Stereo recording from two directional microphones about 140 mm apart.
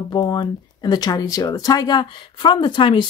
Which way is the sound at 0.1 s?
30° left (ahead or behind).